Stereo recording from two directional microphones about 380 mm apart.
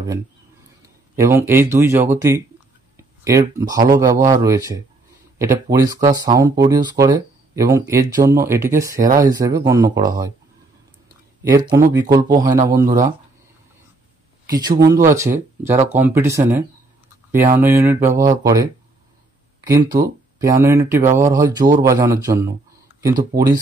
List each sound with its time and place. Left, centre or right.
1.1 s speech: centre
11.4 s speech: centre
14.4 s a sound: centre
14.8 s speech: centre
19.7 s speech: centre